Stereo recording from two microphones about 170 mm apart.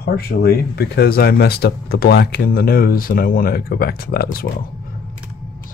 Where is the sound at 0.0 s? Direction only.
65° left (ahead or behind).